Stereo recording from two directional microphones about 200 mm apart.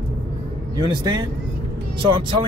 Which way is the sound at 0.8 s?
20° right (ahead or behind).